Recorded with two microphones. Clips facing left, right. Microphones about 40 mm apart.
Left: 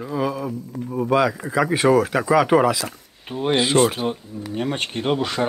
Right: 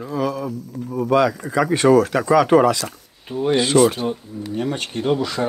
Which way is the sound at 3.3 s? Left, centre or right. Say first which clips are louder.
Right 2 dB; left.